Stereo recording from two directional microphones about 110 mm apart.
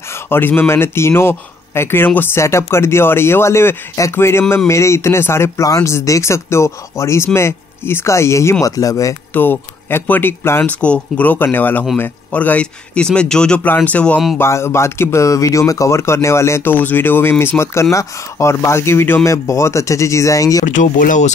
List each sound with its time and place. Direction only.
0.1 s speech: 20° left (ahead or behind)
9.3 s speech: 20° left (ahead or behind)
14.4 s speech: 25° left (ahead or behind)